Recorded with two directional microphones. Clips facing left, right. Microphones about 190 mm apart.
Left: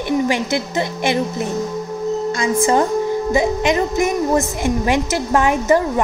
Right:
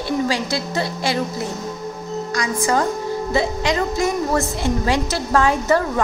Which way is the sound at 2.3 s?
25° left (ahead or behind).